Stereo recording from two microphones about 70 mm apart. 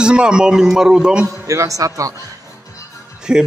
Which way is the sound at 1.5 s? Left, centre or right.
Right.